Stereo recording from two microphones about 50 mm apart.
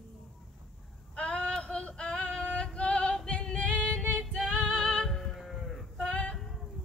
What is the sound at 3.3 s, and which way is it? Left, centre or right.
Singing, left.